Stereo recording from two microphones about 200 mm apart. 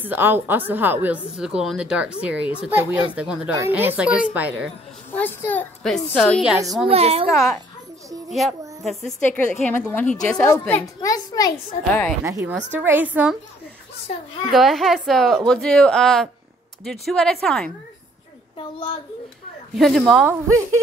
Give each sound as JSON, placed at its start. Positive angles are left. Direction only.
{"t": 0.0, "sound": "a woman's voice", "side_deg": -10}
{"t": 5.1, "sound": "a woman's voice", "side_deg": 10}
{"t": 6.9, "sound": "a child's voice", "side_deg": -30}
{"t": 8.3, "sound": "a woman's voice", "side_deg": 0}
{"t": 12.3, "sound": "a woman's voice", "side_deg": -15}
{"t": 14.5, "sound": "a woman's voice", "side_deg": 0}
{"t": 19.8, "sound": "a woman's voice", "side_deg": 0}
{"t": 20.2, "sound": "a woman's voice", "side_deg": -15}